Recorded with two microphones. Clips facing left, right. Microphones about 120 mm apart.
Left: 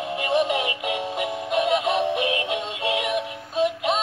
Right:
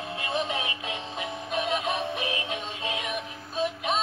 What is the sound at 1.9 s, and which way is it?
Synthetic singing, 75° left (ahead or behind).